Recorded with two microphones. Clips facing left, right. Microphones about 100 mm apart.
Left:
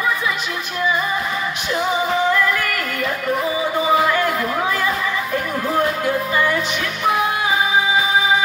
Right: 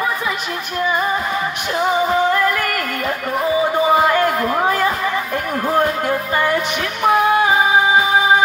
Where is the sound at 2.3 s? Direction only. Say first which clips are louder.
Right 2 dB; 50° right (ahead or behind).